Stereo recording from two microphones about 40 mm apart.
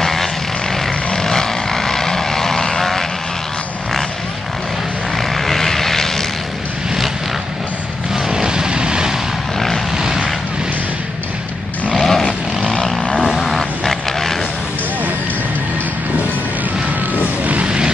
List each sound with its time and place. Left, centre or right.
0.0 s vehicle: centre
5.3 s vehicle: centre
8.3 s vehicle: centre
11.9 s vehicle: centre
17.6 s vehicle: right